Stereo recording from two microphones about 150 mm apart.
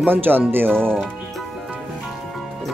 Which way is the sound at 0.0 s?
15° right (ahead or behind).